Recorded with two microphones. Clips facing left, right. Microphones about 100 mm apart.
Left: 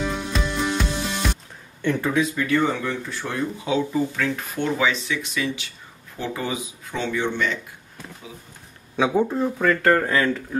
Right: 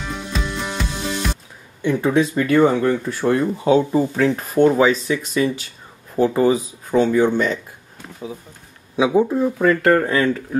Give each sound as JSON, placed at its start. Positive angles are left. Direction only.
{"t": 0.0, "sound": "music", "side_deg": 0}
{"t": 1.8, "sound": "speech", "side_deg": -15}
{"t": 2.3, "sound": "speech", "side_deg": -45}
{"t": 8.9, "sound": "speech", "side_deg": -10}